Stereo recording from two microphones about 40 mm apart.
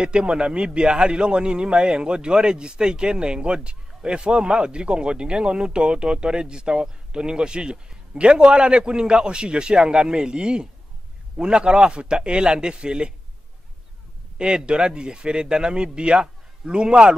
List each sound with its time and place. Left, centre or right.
0.0 s a man's voice: right
14.4 s a man's voice: right